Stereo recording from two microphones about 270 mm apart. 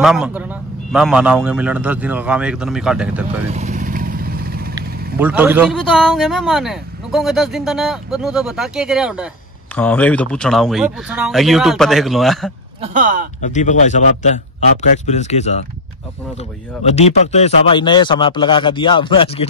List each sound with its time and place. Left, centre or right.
0.0 s speech: centre
3.5 s vehicle: right
5.2 s speech: centre
12.8 s speech: right
13.4 s a man's voice: left
16.8 s speech: left